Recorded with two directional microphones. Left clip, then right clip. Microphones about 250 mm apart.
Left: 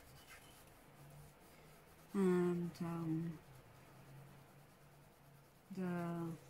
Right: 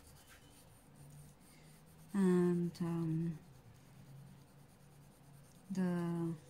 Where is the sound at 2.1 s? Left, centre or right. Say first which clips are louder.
Right 2 dB; right.